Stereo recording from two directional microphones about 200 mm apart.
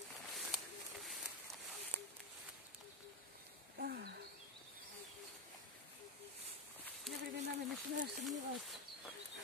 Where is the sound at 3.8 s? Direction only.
50° right (ahead or behind).